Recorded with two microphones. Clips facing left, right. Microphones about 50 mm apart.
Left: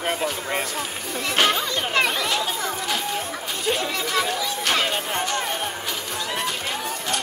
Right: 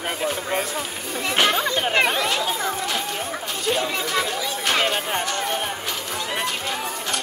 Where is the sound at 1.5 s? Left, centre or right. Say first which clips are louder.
Right 2 dB; right.